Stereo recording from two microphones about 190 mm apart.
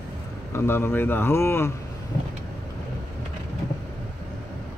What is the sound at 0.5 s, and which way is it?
Speech, 10° left (ahead or behind).